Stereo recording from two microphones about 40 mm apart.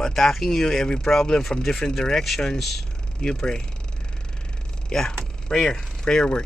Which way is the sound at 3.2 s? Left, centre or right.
Centre.